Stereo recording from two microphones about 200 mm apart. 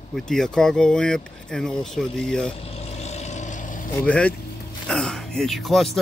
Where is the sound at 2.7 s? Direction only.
30° left (ahead or behind).